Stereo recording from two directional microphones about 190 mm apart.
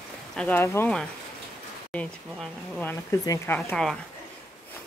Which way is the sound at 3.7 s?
5° left (ahead or behind).